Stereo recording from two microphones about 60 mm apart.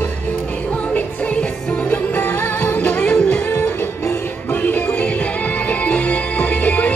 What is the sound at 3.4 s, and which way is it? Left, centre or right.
Music, left.